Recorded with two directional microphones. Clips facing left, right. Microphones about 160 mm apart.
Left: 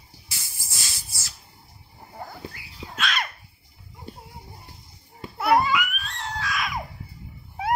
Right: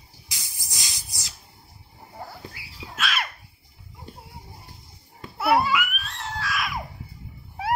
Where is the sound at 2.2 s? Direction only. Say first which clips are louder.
Left 2 dB; 5° right (ahead or behind).